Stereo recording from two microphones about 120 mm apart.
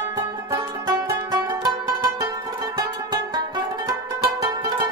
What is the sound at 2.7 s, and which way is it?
Music, 35° right (ahead or behind).